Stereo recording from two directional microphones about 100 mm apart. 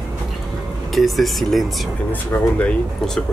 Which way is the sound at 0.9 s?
Centre (ahead or behind).